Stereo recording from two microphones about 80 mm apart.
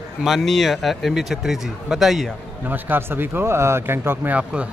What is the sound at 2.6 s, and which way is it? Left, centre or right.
Speech, right.